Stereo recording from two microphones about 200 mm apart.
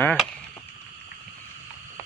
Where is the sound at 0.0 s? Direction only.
5° left (ahead or behind).